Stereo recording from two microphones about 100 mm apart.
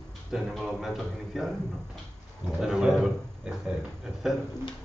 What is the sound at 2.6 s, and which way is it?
Speech, 5° right (ahead or behind).